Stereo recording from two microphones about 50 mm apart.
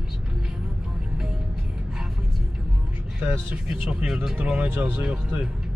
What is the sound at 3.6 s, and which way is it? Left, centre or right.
Speech, centre.